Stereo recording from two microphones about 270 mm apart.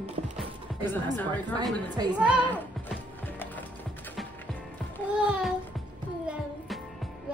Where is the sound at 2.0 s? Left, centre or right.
Centre.